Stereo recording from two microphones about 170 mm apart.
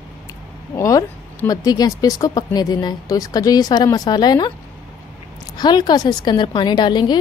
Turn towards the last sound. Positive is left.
turn(degrees=25)  # may be behind; listen again after turning